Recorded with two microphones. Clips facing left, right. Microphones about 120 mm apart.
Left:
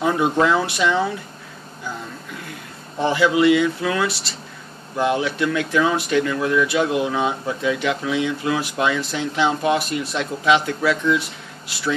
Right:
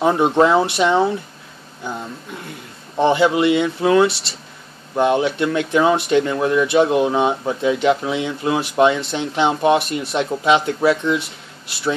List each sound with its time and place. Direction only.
0.0 s speech: 30° right (ahead or behind)
3.0 s speech: 25° right (ahead or behind)